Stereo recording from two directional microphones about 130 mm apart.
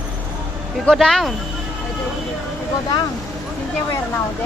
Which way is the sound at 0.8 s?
Centre (ahead or behind).